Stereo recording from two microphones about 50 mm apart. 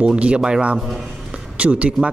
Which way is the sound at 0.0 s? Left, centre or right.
Right.